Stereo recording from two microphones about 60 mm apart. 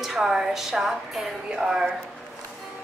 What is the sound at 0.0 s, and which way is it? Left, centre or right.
A woman's voice, centre.